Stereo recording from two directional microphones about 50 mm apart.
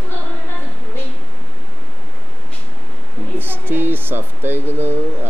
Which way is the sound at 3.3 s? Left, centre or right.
Right.